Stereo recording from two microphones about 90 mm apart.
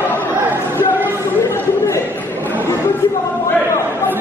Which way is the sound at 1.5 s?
30° left (ahead or behind).